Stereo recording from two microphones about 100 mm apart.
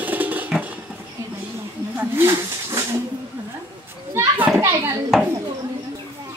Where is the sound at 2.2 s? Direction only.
25° right (ahead or behind).